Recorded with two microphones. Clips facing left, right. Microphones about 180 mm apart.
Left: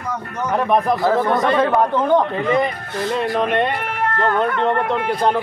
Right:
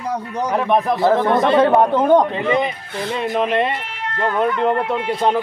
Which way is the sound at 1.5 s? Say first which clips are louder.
Right 3 dB; 30° right (ahead or behind).